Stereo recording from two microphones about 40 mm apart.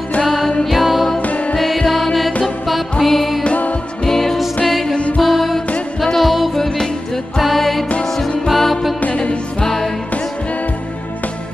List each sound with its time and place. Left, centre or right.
0.2 s music: centre
4.9 s music: left
5.2 s music: centre
9.1 s music: left